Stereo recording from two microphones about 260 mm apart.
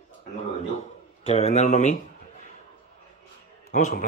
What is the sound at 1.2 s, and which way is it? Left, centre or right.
Speech, left.